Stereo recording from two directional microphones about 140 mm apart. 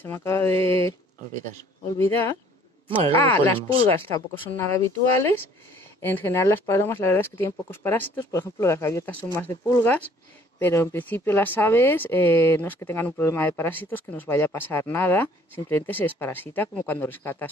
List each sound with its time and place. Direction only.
0.0 s speech: 15° left (ahead or behind)
2.0 s speech: 15° left (ahead or behind)
4.6 s speech: 20° left (ahead or behind)